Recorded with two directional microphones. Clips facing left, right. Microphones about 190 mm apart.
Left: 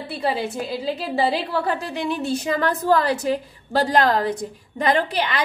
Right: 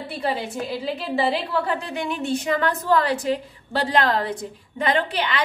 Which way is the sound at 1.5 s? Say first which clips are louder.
Left 1 dB; 35° left (ahead or behind).